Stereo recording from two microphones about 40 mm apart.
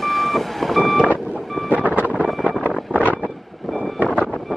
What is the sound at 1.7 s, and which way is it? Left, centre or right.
Vehicle, right.